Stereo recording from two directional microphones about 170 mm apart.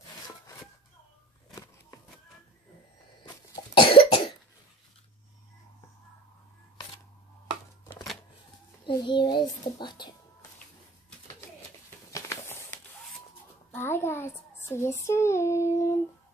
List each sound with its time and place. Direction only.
3.3 s cough: 30° left (ahead or behind)
8.8 s a child's voice: 25° left (ahead or behind)
12.1 s a sound: 15° left (ahead or behind)
13.7 s a child's voice: 15° left (ahead or behind)